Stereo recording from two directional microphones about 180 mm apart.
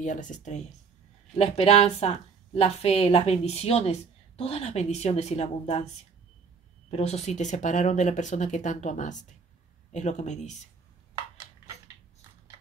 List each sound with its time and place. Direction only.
0.0 s a woman's voice: 45° left (ahead or behind)
6.9 s a woman's voice: 35° left (ahead or behind)